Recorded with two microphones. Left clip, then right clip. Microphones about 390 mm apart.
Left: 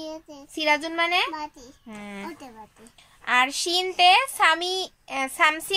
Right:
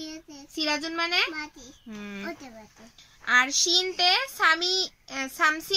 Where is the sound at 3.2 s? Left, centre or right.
Left.